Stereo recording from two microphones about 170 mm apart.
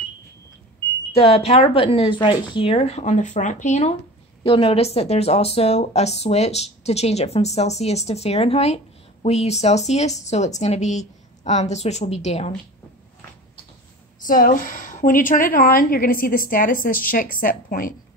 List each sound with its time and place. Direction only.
1.1 s a woman's voice: 35° left (ahead or behind)
4.4 s a woman's voice: 30° left (ahead or behind)
14.2 s a woman's voice: 55° left (ahead or behind)